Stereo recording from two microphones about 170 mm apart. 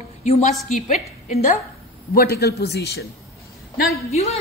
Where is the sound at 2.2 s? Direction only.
70° left (ahead or behind).